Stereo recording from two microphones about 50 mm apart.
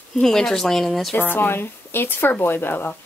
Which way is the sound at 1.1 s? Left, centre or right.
Left.